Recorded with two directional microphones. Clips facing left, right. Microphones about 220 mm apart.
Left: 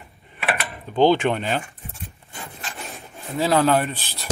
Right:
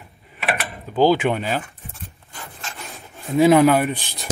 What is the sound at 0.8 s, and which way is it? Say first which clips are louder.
Speech: even; centre (ahead or behind).